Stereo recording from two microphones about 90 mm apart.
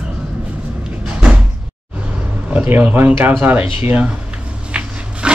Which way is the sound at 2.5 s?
20° right (ahead or behind).